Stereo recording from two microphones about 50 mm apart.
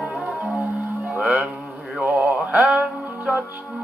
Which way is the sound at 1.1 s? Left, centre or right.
Right.